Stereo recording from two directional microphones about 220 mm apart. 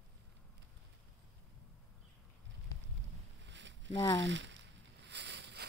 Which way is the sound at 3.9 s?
20° left (ahead or behind).